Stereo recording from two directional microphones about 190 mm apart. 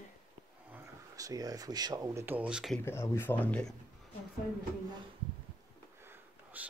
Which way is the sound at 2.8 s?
10° left (ahead or behind).